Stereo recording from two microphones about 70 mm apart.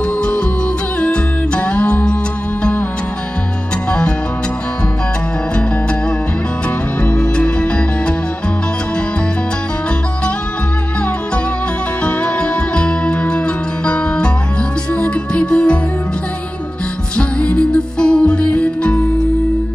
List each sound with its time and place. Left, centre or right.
1.0 s music: centre
7.0 s music: centre
12.0 s music: centre
17.2 s music: centre